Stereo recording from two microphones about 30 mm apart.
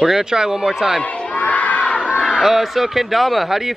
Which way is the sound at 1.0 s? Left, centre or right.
Left.